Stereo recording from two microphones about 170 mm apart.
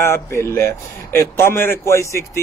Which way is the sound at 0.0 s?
15° left (ahead or behind).